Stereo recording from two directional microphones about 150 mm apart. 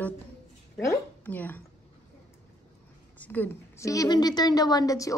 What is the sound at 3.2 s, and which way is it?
A woman's voice, 10° left (ahead or behind).